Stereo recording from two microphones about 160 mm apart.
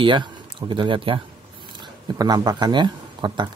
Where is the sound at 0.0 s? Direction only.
30° right (ahead or behind).